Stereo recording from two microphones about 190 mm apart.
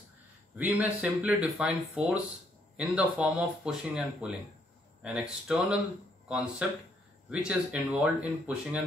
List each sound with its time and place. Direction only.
0.6 s speech: 10° right (ahead or behind)